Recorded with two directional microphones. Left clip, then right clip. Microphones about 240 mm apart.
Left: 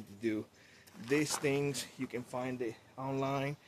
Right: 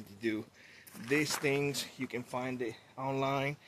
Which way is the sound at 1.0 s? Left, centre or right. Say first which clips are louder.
Right 1 dB; centre.